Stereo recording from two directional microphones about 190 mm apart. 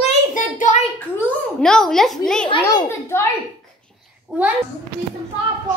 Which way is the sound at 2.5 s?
25° left (ahead or behind).